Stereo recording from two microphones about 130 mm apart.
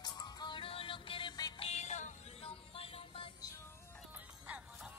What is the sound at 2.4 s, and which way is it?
Music, 45° left (ahead or behind).